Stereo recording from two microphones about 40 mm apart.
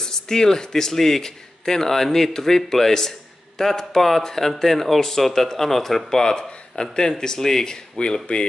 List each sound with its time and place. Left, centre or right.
0.0 s speech: centre